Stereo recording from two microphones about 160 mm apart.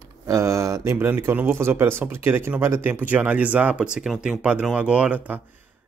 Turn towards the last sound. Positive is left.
turn(degrees=-10)  # may be behind; listen again after turning